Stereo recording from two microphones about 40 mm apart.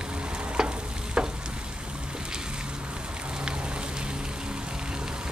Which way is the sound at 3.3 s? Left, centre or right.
Right.